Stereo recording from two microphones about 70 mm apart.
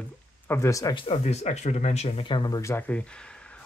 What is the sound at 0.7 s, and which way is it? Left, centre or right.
Speech, left.